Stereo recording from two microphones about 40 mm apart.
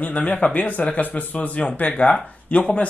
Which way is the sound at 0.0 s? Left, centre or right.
Left.